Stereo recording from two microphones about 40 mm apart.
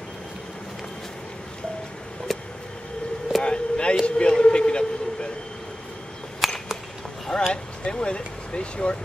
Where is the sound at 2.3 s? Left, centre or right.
Centre.